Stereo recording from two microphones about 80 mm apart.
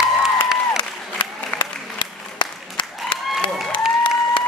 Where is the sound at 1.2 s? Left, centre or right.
Left.